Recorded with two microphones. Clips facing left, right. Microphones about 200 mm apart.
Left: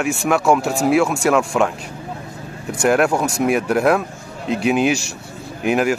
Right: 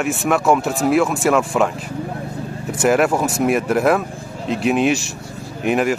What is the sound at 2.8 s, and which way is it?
Speech, centre (ahead or behind).